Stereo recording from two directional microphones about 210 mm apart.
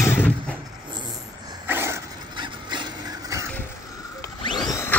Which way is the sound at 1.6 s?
10° right (ahead or behind).